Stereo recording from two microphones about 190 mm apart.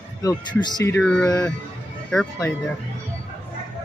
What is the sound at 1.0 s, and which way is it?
Speech, 5° left (ahead or behind).